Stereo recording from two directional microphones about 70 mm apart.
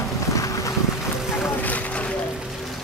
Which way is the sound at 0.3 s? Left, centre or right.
Left.